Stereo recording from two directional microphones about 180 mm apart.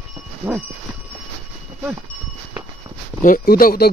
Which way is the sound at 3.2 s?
50° left (ahead or behind).